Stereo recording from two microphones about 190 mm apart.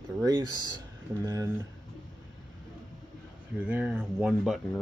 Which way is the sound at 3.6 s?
5° right (ahead or behind).